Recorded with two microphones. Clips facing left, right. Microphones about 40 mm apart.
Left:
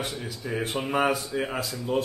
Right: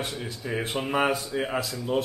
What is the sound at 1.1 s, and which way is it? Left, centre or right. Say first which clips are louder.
Speech: right 1 dB; centre.